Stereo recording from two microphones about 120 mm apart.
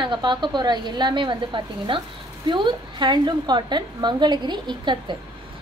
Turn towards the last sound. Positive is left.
turn(degrees=-40)  # may be behind; listen again after turning